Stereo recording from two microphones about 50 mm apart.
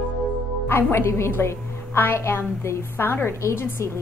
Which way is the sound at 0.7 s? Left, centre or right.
Left.